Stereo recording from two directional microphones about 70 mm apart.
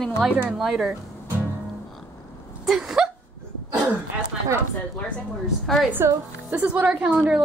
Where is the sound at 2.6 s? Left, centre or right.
Centre.